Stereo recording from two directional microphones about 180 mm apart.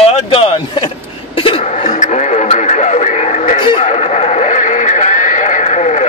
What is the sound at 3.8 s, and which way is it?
Neigh, 40° left (ahead or behind).